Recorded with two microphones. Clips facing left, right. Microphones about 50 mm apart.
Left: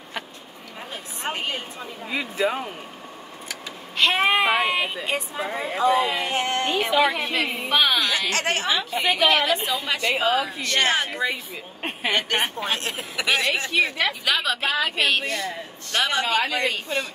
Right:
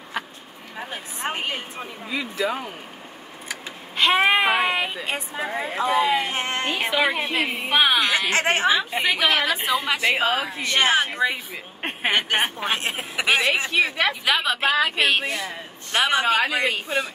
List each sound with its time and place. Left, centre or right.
0.7 s a sound: right
2.4 s speech: centre
3.4 s a sound: right
5.0 s speech: right
5.5 s speech: centre
5.8 s speech: right
9.8 s speech: centre
10.1 s speech: right
11.8 s speech: right; by 15.5 s centre
15.9 s speech: centre